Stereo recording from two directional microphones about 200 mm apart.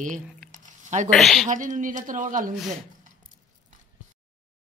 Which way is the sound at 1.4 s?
40° right (ahead or behind).